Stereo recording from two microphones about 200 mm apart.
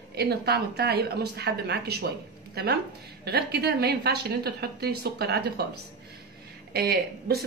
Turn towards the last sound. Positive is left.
turn(degrees=-50)  # may be behind; listen again after turning